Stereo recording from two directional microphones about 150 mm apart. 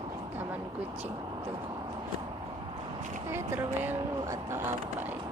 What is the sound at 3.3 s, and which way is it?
Speech, 15° right (ahead or behind).